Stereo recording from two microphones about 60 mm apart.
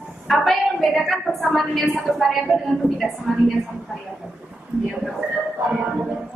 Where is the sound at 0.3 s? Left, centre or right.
Centre.